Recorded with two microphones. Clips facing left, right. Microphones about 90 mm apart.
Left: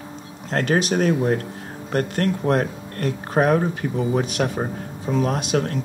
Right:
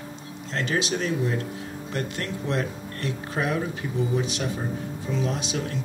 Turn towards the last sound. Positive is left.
turn(degrees=55)  # may be behind; listen again after turning